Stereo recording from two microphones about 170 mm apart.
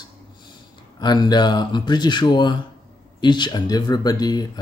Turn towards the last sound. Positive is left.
turn(degrees=25)  # may be behind; listen again after turning